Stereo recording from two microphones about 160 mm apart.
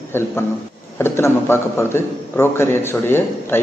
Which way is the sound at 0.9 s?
15° left (ahead or behind).